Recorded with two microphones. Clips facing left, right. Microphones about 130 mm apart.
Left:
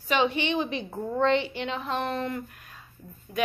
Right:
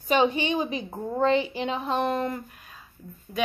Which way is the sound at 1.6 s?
10° right (ahead or behind).